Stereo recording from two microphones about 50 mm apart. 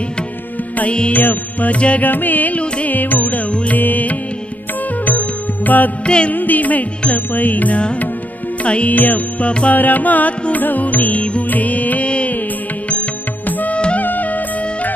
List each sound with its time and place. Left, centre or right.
0.7 s music: left
1.1 s music: left
2.0 s music: left
6.0 s music: left
6.3 s music: left
9.8 s music: left
13.5 s music: left
13.7 s music: left
14.0 s music: left